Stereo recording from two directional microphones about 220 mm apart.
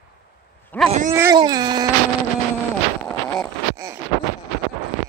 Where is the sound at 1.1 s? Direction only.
15° right (ahead or behind).